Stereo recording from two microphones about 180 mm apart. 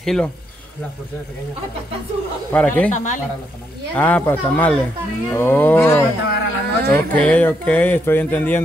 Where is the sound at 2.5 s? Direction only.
10° left (ahead or behind).